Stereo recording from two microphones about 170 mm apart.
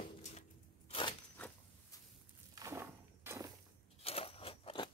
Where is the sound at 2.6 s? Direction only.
15° right (ahead or behind).